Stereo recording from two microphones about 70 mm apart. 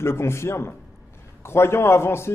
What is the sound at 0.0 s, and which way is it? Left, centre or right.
A man's voice, left.